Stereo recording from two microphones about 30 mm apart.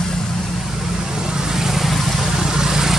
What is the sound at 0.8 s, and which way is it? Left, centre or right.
Vehicle, right.